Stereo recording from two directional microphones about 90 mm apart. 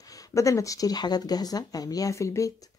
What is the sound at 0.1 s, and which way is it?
Speech, 40° left (ahead or behind).